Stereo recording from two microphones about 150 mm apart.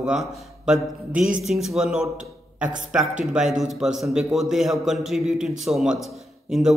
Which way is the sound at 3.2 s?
Centre (ahead or behind).